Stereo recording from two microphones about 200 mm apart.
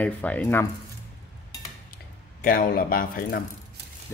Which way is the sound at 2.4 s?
45° left (ahead or behind).